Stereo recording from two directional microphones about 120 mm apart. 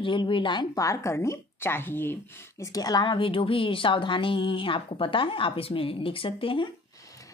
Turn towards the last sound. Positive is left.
turn(degrees=45)  # may be behind; listen again after turning